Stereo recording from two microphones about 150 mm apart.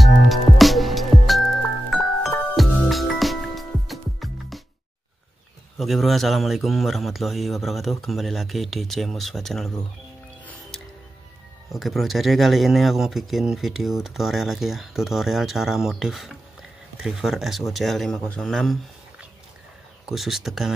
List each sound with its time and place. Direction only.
0.0 s music: centre (ahead or behind)
5.8 s speech: centre (ahead or behind)
11.7 s speech: centre (ahead or behind)
20.1 s speech: centre (ahead or behind)